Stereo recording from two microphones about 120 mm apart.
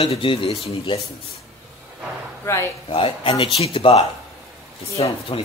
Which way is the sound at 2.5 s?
20° left (ahead or behind).